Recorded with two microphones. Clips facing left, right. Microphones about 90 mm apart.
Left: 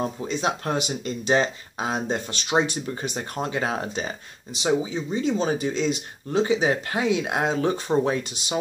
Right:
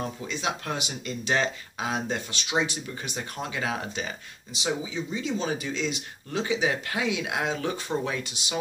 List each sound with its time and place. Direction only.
0.0 s speech: 35° left (ahead or behind)
1.2 s speech: 25° left (ahead or behind)